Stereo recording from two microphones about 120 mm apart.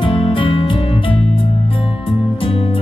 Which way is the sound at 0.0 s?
45° left (ahead or behind).